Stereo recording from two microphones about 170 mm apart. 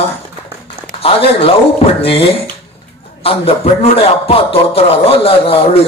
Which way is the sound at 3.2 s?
35° left (ahead or behind).